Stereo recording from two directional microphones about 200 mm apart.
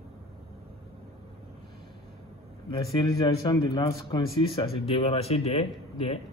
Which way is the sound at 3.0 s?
20° left (ahead or behind).